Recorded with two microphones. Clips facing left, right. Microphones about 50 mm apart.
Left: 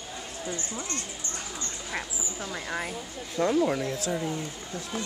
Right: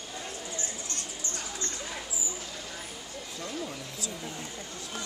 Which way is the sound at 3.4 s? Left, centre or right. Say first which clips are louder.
Left 14 dB; left.